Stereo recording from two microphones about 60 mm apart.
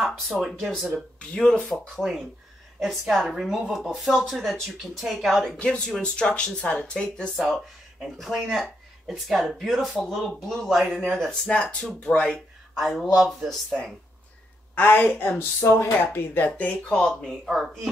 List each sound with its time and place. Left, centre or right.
0.0 s speech: centre
1.2 s speech: centre
1.7 s speech: centre
5.6 s speech: centre
7.3 s speech: centre
12.3 s speech: centre
14.8 s speech: left
17.1 s speech: centre